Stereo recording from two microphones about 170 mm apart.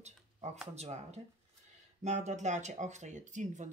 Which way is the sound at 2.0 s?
45° right (ahead or behind).